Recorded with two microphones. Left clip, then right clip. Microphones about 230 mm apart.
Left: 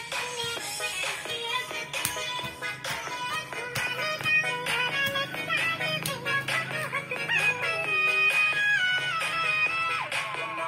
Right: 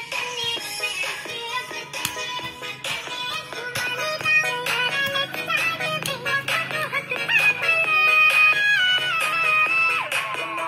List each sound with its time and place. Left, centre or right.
0.4 s music: right
4.0 s music: right